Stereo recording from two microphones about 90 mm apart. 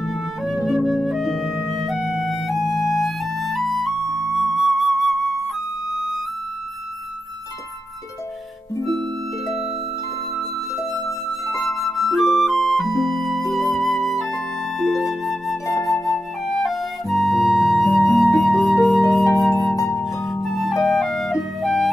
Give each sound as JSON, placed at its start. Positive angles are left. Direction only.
{"t": 0.0, "sound": "flute", "side_deg": 0}
{"t": 10.8, "sound": "music", "side_deg": 0}
{"t": 15.8, "sound": "flute", "side_deg": 0}
{"t": 19.7, "sound": "music", "side_deg": 40}
{"t": 20.4, "sound": "music", "side_deg": 0}